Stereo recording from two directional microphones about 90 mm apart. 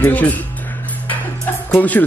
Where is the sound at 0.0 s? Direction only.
15° left (ahead or behind).